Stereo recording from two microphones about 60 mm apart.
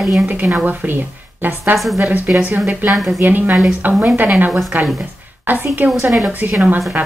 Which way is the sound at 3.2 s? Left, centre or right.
Right.